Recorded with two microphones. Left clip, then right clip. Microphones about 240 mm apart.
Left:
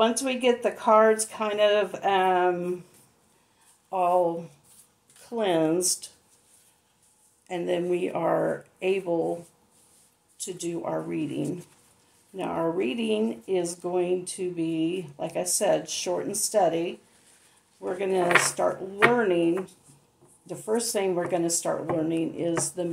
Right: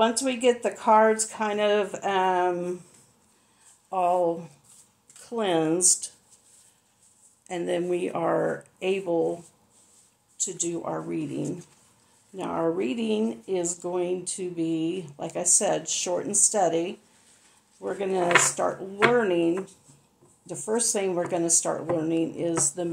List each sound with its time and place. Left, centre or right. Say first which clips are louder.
0.0 s speech: right 1 dB; right
3.9 s speech: even; right
7.4 s speech: even; right
10.3 s speech: right 2 dB; right
18.2 s speech: right 1 dB; centre
19.1 s speech: even; right